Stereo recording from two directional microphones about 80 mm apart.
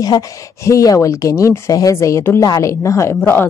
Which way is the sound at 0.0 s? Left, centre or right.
Left.